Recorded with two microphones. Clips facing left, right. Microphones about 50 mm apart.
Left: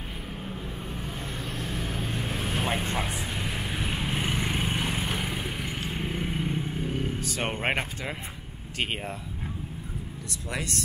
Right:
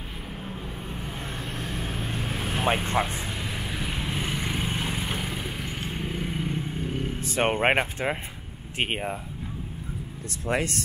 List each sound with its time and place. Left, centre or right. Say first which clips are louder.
1.4 s vehicle: even; right
1.9 s vehicle: even; centre
2.6 s speech: right 7 dB; right
3.2 s vehicle: even; centre
7.2 s vehicle: right 5 dB; right
7.6 s speech: right 6 dB; right
8.7 s speech: right 3 dB; right
10.5 s speech: right 7 dB; right